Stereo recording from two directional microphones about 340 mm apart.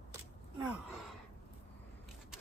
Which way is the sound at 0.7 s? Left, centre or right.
Centre.